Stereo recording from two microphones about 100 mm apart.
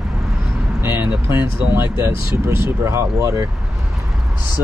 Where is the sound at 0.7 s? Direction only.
25° right (ahead or behind).